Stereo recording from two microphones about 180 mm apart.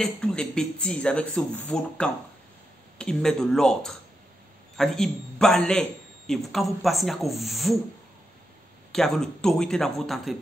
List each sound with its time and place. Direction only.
0.0 s a man's voice: 5° left (ahead or behind)
8.9 s a man's voice: 5° left (ahead or behind)